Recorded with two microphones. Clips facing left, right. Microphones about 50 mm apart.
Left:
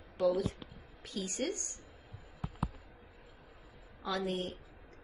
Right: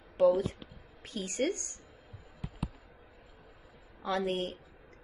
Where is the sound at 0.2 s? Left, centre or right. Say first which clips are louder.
Right 5 dB; right.